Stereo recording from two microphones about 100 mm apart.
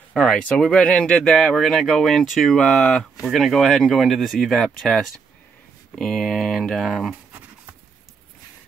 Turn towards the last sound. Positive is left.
turn(degrees=0)  # may be behind; listen again after turning